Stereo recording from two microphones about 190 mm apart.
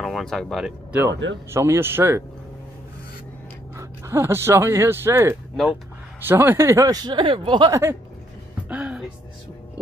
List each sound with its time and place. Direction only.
0.0 s speech: centre (ahead or behind)
1.5 s speech: 15° right (ahead or behind)
3.7 s speech: 15° right (ahead or behind)
8.6 s music: 5° right (ahead or behind)